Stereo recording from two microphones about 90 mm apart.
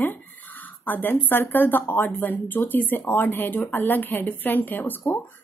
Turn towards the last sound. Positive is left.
turn(degrees=25)  # may be behind; listen again after turning